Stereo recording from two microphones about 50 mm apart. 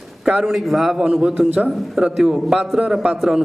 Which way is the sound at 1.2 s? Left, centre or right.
Right.